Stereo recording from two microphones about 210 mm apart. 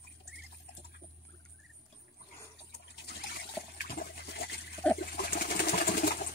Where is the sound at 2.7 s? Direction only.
50° left (ahead or behind).